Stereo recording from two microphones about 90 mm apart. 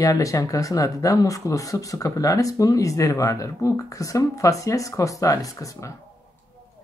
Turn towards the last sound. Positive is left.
turn(degrees=35)  # may be behind; listen again after turning